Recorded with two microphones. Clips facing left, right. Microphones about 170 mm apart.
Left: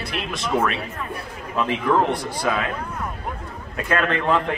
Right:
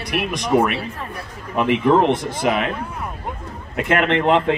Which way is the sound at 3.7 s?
25° right (ahead or behind).